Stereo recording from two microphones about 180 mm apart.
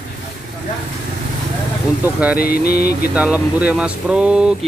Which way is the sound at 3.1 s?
5° right (ahead or behind).